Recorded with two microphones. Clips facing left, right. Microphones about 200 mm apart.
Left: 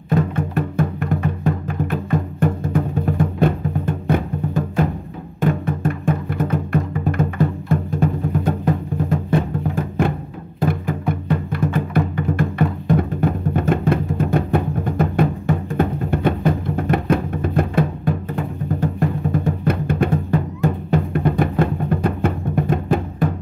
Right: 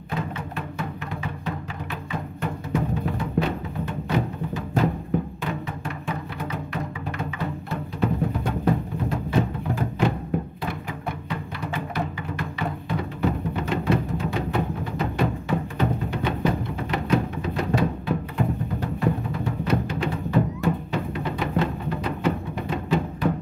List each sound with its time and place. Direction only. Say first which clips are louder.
0.1 s music: left 10 dB; 50° left (ahead or behind)
9.8 s music: left 3 dB; 50° left (ahead or behind)